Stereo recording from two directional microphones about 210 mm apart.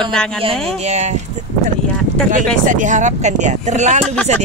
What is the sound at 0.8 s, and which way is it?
Speech, 30° right (ahead or behind).